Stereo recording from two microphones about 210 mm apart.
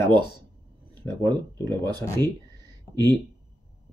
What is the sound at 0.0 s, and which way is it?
Speech, 20° right (ahead or behind).